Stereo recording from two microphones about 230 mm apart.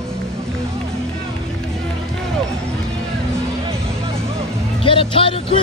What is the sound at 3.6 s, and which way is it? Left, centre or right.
Music, right.